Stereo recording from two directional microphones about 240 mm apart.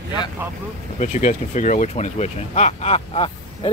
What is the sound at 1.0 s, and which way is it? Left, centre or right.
Speech, left.